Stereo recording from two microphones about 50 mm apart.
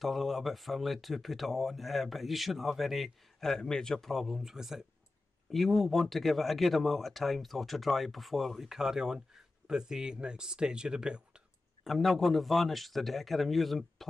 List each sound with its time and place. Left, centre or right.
0.0 s speech: centre
5.5 s speech: centre
11.8 s speech: centre